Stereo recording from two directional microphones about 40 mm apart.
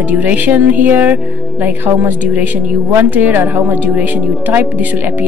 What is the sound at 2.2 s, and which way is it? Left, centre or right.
Speech, right.